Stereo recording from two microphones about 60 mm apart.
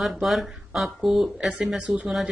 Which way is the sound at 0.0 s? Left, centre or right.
Centre.